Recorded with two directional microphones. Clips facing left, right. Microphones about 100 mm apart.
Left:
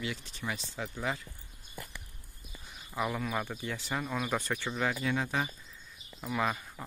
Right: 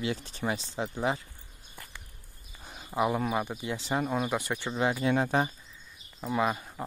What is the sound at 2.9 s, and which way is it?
Speech, 25° right (ahead or behind).